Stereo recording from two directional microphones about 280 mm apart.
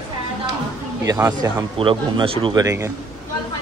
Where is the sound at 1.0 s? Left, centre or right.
Centre.